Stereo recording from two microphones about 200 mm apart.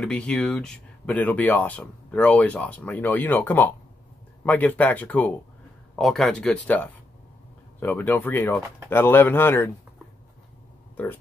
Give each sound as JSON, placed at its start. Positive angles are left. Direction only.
{"t": 0.0, "sound": "speech", "side_deg": 5}